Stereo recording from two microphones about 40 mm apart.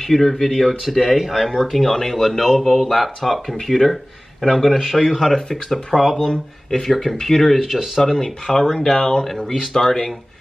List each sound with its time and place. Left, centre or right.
0.0 s speech: centre
8.0 s speech: centre